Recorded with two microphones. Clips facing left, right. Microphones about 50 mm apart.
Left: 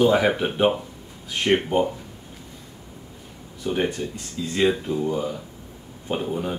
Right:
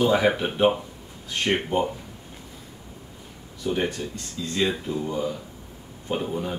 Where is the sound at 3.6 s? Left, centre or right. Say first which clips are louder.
Left 2 dB; centre.